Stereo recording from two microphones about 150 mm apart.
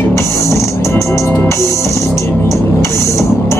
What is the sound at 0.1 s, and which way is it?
Music, 15° left (ahead or behind).